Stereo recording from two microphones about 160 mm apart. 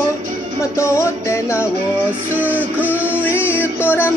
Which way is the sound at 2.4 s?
10° left (ahead or behind).